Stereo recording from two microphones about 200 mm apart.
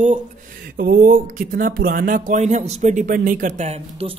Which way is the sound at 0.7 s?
45° right (ahead or behind).